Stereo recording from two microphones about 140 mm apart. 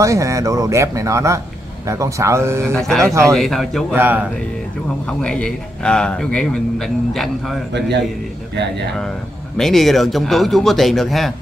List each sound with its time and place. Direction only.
0.0 s speech: 20° right (ahead or behind)
2.7 s a man's voice: 5° left (ahead or behind)
3.9 s speech: 15° right (ahead or behind)
5.0 s a man's voice: 5° left (ahead or behind)
9.6 s a man's voice: centre (ahead or behind)